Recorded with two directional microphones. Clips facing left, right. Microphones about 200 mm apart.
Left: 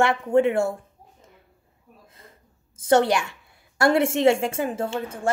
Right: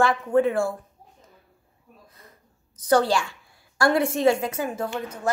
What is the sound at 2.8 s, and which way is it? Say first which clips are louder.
Speech: left 1 dB; 25° left (ahead or behind).